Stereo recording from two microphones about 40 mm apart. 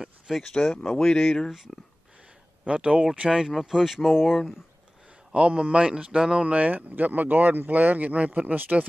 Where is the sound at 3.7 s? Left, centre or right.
Centre.